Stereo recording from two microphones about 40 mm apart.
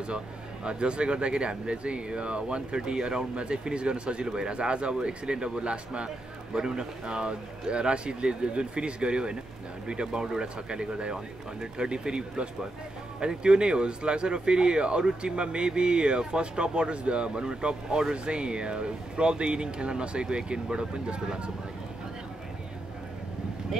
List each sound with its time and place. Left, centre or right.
0.7 s speech: right